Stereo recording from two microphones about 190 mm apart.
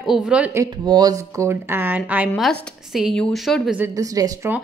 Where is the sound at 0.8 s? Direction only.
20° right (ahead or behind); by 3.8 s centre (ahead or behind).